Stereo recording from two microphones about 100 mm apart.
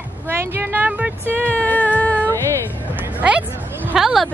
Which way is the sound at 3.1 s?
10° right (ahead or behind).